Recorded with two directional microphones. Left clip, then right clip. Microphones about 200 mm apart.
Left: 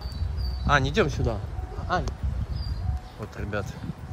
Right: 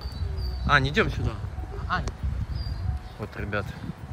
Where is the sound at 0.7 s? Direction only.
15° left (ahead or behind).